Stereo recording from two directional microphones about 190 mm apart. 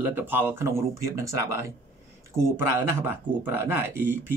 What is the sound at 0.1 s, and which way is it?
Speech, 10° right (ahead or behind).